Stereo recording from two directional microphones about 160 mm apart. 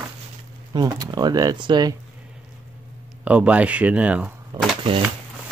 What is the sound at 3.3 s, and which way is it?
Speech, 10° right (ahead or behind).